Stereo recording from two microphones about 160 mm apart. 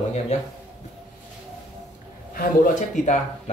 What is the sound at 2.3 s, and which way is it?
Speech, 70° left (ahead or behind).